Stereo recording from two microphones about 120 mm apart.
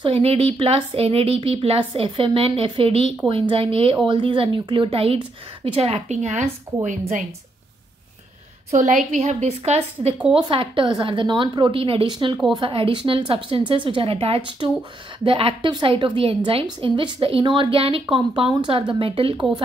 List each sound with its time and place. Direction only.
0.0 s a woman's voice: 55° right (ahead or behind); by 6.4 s 75° right (ahead or behind)
6.8 s a woman's voice: 90° right
8.7 s a woman's voice: 90° right; by 10.1 s 60° right (ahead or behind)
10.3 s speech: 50° right (ahead or behind)